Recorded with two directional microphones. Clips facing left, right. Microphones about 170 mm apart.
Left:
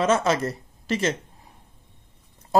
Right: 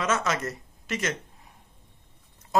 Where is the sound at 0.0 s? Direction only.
30° left (ahead or behind).